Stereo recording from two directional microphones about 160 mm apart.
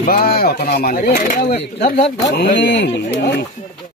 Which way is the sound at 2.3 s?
90° left.